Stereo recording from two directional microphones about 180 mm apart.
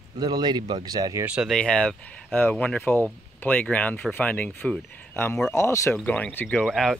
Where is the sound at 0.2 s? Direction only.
25° right (ahead or behind).